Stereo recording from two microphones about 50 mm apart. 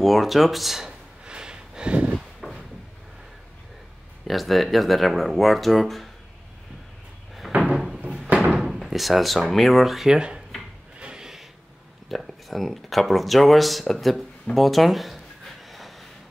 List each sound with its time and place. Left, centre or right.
0.0 s speech: centre
1.2 s snort: centre
2.4 s drawer open or close: centre
4.3 s speech: centre
7.6 s a sound: centre
8.5 s speech: centre
11.0 s drawer open or close: centre
12.1 s speech: centre
13.9 s a sound: centre